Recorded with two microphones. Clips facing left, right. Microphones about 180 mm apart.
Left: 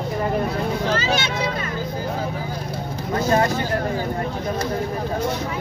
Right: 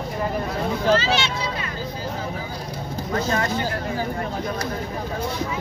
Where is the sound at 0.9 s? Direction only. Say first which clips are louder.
Right 2 dB; 45° left (ahead or behind).